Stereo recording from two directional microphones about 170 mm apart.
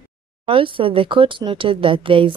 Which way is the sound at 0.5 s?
30° right (ahead or behind).